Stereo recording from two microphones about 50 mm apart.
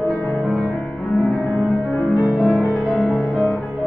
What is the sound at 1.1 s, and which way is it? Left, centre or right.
Music, left.